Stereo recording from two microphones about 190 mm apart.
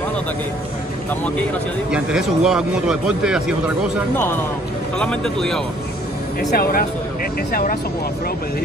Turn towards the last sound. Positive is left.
turn(degrees=50)  # may be behind; listen again after turning